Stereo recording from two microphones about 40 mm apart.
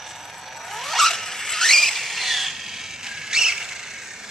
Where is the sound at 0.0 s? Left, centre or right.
Centre.